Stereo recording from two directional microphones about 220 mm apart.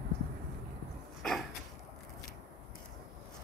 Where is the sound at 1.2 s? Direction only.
Centre (ahead or behind).